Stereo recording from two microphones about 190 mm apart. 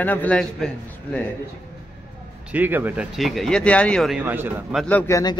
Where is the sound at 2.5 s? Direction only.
10° right (ahead or behind).